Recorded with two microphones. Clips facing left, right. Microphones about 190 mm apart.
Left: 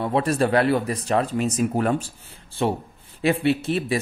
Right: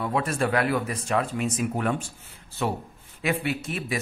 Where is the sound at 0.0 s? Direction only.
30° left (ahead or behind).